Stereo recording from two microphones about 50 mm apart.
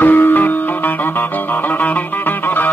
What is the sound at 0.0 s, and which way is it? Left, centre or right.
Music, left.